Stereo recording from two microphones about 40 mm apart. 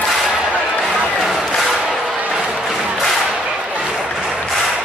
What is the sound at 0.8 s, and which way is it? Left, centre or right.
Crowd, centre.